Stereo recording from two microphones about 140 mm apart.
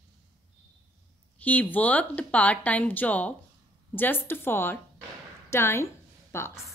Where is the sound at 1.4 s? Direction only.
10° left (ahead or behind).